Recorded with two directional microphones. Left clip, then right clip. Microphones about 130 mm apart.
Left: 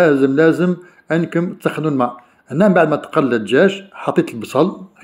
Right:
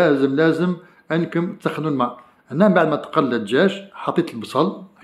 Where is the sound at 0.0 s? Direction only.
25° left (ahead or behind).